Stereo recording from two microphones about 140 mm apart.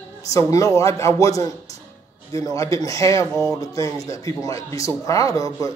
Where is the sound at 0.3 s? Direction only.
25° left (ahead or behind).